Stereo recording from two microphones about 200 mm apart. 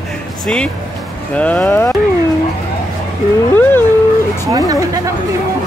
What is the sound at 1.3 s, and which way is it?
Speech, 5° left (ahead or behind).